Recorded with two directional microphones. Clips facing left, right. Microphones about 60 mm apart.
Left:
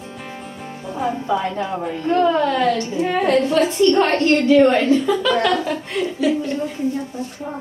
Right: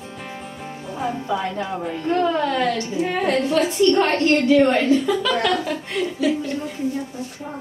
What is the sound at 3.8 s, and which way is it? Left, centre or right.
A woman's voice, left.